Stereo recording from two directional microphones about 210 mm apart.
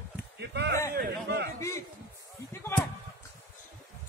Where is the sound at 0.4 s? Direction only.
55° right (ahead or behind).